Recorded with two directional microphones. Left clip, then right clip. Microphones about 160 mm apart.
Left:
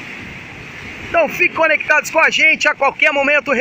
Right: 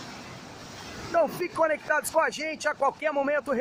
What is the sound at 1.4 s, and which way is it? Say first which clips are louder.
A man's voice: left 12 dB; 5° left (ahead or behind).